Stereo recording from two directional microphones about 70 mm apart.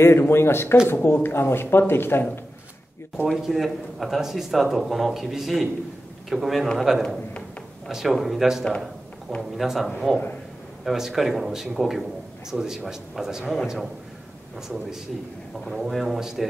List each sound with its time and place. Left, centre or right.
0.0 s speech: left
3.3 s a man's voice: centre
15.6 s a man's voice: centre